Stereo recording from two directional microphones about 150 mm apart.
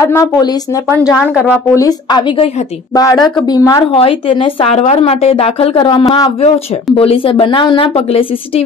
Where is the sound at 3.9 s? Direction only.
35° left (ahead or behind).